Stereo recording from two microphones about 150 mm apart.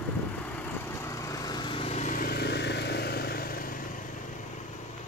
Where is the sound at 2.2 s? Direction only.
90° left; by 3.8 s 70° left (ahead or behind).